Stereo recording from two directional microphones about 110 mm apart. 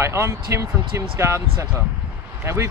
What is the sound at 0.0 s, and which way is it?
Speech, 25° right (ahead or behind).